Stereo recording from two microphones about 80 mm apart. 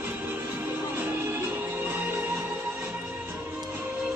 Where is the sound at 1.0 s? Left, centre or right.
Right.